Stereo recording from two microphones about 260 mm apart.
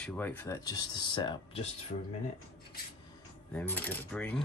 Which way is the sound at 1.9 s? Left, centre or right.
Left.